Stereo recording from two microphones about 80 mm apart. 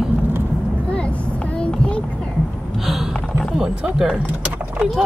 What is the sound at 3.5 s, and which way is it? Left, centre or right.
Speech, centre.